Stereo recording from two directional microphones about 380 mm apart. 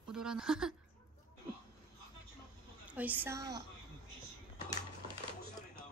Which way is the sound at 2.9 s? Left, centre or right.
Centre.